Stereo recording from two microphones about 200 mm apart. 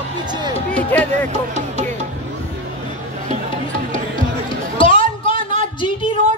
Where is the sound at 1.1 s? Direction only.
35° right (ahead or behind).